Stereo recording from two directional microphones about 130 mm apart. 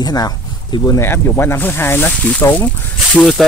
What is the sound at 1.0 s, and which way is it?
Speech, 15° left (ahead or behind).